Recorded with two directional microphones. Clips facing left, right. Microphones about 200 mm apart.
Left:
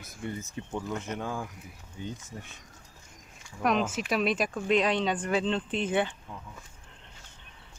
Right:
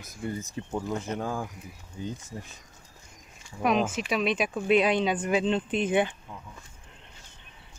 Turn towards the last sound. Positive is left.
turn(degrees=-15)  # may be behind; listen again after turning